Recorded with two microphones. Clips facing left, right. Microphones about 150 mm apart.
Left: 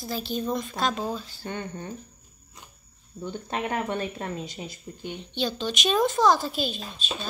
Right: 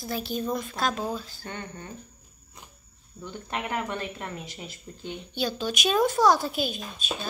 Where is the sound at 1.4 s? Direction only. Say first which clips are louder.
Left 4 dB; 20° left (ahead or behind).